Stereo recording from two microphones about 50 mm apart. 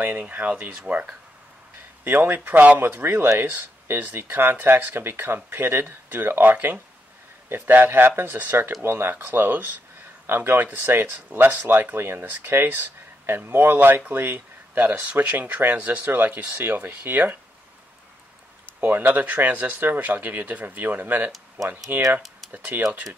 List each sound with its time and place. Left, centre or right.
0.0 s speech: right
16.5 s speech: right
18.8 s speech: right